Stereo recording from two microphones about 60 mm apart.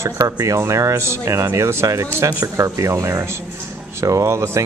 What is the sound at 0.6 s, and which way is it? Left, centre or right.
Speech, right.